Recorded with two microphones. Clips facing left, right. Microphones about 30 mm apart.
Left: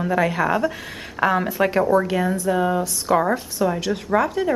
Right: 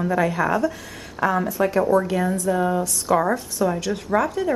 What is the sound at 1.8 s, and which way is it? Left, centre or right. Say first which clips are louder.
Speech: even; centre.